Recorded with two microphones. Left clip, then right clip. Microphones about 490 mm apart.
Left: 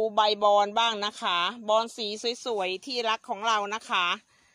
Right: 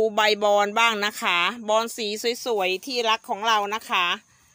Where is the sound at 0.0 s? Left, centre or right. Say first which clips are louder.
Right 3 dB; left.